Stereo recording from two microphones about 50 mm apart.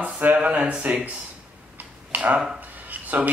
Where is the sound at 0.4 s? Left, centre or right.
Right.